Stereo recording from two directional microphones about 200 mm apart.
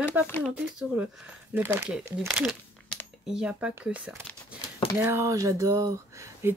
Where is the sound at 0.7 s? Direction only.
5° right (ahead or behind).